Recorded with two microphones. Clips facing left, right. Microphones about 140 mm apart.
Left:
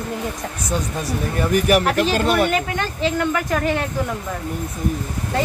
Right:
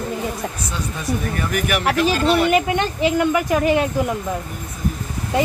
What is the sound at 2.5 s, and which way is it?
Speech, 20° right (ahead or behind).